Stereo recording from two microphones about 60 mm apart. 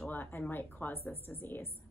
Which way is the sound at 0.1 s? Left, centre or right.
Left.